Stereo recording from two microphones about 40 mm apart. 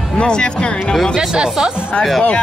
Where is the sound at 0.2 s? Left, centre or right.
Left.